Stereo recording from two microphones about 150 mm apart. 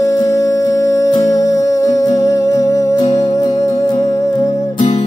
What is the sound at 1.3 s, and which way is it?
Music, 25° left (ahead or behind).